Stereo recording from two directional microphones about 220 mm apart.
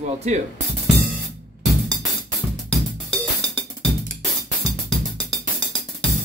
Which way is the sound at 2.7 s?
5° left (ahead or behind).